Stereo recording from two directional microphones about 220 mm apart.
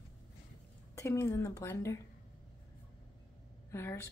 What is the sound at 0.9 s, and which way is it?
A woman's voice, 15° left (ahead or behind).